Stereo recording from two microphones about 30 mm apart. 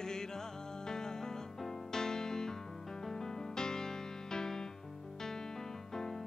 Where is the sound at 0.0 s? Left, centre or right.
Left.